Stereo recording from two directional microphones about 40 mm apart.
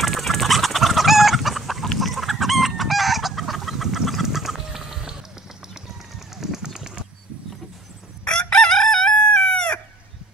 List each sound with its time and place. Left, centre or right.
0.0 s chicken: centre
6.1 s bird: centre
8.3 s chicken: left